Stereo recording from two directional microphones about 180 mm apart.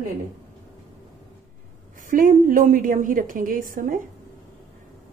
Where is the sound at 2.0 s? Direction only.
50° right (ahead or behind).